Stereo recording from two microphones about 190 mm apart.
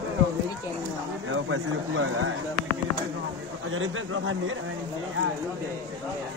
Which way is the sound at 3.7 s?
90° right.